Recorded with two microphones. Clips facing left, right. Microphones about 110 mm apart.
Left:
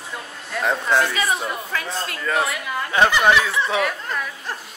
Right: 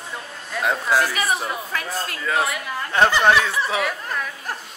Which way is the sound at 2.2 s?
Centre (ahead or behind).